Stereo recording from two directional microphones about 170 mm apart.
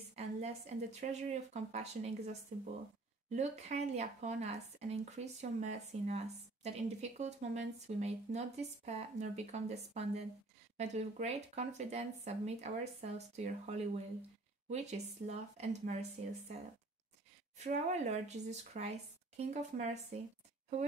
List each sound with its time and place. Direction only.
0.1 s speech: 40° right (ahead or behind)
17.6 s speech: 45° right (ahead or behind)